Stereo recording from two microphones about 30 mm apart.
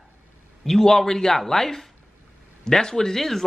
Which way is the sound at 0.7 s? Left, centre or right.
Centre.